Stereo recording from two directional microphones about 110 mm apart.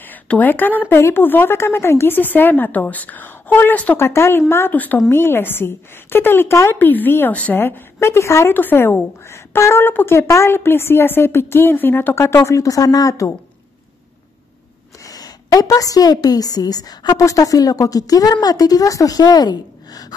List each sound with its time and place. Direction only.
0.0 s a woman's voice: 15° left (ahead or behind); by 13.3 s 30° left (ahead or behind)
15.0 s a woman's voice: 35° left (ahead or behind)